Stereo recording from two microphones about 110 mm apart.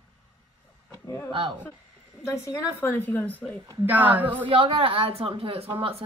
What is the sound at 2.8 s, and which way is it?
Speech, 15° left (ahead or behind).